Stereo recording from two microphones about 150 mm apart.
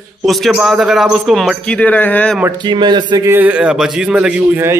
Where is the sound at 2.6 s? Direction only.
30° right (ahead or behind).